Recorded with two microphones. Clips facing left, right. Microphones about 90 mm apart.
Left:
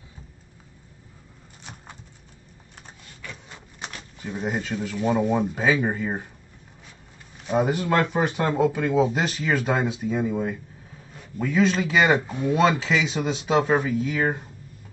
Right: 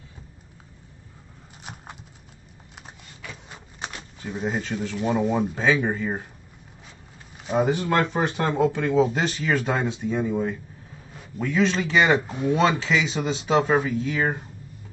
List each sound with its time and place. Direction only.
1.6 s a sound: 15° right (ahead or behind)
3.2 s printer: 15° right (ahead or behind)
4.2 s speech: centre (ahead or behind)
7.4 s a man's voice: centre (ahead or behind)